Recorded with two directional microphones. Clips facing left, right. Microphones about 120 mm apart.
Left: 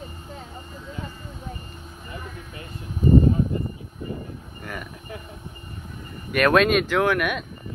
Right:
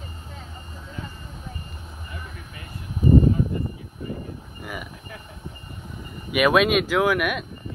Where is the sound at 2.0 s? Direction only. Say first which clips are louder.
Left 4 dB; 25° left (ahead or behind).